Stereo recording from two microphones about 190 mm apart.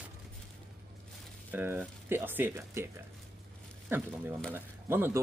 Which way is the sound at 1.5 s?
10° right (ahead or behind).